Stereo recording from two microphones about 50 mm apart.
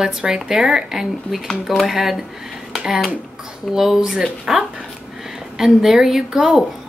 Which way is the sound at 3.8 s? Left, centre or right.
Centre.